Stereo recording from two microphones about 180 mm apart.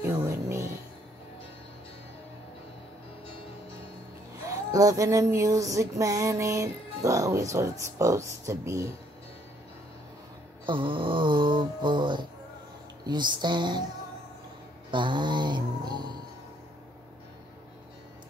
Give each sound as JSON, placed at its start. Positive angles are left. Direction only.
{"t": 0.2, "sound": "music", "side_deg": -15}
{"t": 4.5, "sound": "a sound", "side_deg": -20}
{"t": 10.6, "sound": "snoring", "side_deg": -30}
{"t": 14.9, "sound": "snoring", "side_deg": -25}